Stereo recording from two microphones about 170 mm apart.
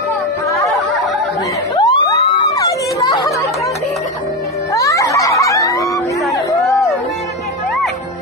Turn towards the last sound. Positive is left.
turn(degrees=20)  # may be behind; listen again after turning